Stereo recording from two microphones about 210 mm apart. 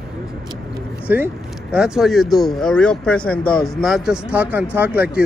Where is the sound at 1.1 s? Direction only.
10° right (ahead or behind).